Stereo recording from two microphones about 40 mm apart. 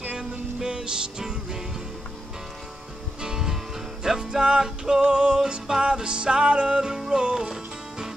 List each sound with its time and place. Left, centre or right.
0.2 s music: centre
3.2 s music: centre